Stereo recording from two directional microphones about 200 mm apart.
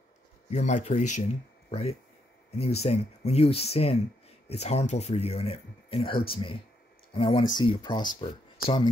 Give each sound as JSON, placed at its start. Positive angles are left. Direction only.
{"t": 0.5, "sound": "speech", "side_deg": 35}